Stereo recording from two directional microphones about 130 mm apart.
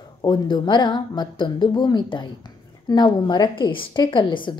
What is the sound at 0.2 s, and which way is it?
A woman's voice, 35° left (ahead or behind).